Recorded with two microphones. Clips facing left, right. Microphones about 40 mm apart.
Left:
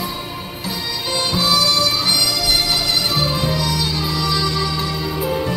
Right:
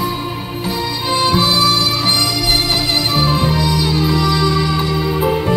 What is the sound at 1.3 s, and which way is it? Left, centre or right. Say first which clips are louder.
Music: right 1 dB; right.